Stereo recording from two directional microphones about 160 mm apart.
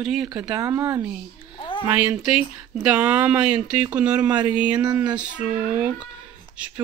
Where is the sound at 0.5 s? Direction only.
15° right (ahead or behind).